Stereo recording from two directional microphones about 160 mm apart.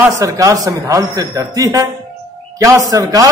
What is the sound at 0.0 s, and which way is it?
A man's voice, 20° right (ahead or behind).